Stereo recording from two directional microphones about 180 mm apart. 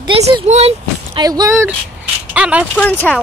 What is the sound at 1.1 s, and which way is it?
Speech, 20° right (ahead or behind).